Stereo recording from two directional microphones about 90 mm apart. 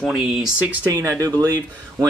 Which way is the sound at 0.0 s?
10° right (ahead or behind).